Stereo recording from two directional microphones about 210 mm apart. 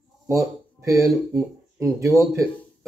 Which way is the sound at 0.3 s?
15° right (ahead or behind).